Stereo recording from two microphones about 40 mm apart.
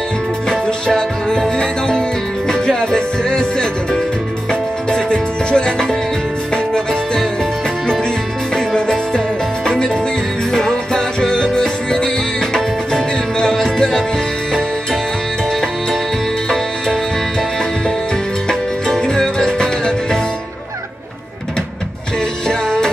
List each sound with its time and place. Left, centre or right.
0.7 s music: centre
16.4 s music: centre
22.5 s music: centre